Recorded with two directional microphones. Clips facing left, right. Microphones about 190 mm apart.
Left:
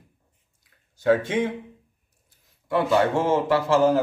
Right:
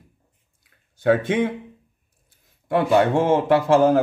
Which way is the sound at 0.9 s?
55° right (ahead or behind).